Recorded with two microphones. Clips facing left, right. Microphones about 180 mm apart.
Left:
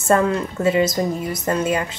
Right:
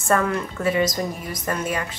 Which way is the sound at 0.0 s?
25° left (ahead or behind).